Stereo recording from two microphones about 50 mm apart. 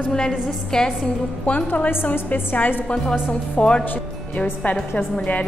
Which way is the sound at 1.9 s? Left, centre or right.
Left.